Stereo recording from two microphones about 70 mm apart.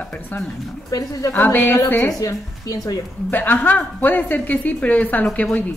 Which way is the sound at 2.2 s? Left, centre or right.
Left.